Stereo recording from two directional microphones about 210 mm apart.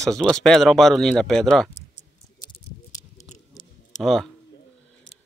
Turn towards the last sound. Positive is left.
turn(degrees=0)  # may be behind; listen again after turning